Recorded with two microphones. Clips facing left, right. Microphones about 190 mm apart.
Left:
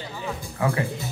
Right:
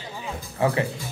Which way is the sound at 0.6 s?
25° right (ahead or behind).